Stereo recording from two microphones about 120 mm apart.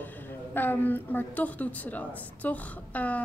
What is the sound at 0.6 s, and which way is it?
A woman's voice, 15° left (ahead or behind).